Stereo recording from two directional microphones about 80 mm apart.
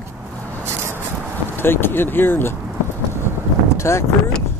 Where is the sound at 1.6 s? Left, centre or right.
Left.